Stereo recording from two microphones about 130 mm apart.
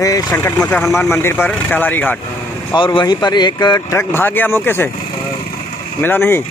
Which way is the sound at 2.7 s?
40° left (ahead or behind).